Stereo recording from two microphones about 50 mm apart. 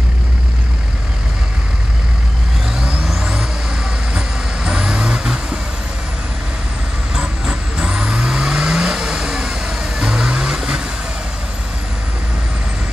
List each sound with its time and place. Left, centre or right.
2.7 s vehicle: centre
4.6 s vehicle: centre
7.2 s vehicle: centre